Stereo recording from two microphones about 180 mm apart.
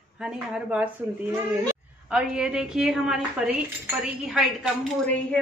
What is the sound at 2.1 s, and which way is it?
A woman's voice, 5° right (ahead or behind).